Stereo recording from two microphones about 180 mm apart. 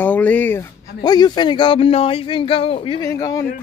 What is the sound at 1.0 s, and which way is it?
Speech, 25° left (ahead or behind).